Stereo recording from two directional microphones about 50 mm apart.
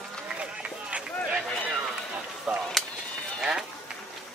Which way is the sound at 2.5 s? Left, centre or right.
Centre.